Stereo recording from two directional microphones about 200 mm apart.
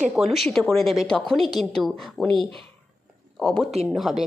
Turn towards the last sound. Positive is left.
turn(degrees=0)  # may be behind; listen again after turning